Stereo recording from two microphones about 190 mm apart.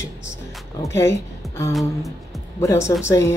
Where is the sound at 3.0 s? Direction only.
15° left (ahead or behind).